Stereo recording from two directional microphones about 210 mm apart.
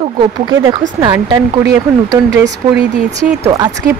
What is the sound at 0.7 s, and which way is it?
Speech, 15° right (ahead or behind).